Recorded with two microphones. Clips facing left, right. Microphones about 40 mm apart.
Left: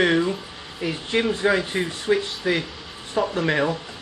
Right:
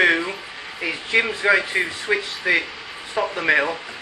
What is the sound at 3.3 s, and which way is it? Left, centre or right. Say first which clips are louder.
Speech: right 4 dB; right.